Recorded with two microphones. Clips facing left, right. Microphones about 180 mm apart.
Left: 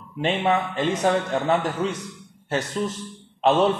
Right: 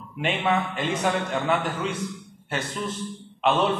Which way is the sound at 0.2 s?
35° left (ahead or behind).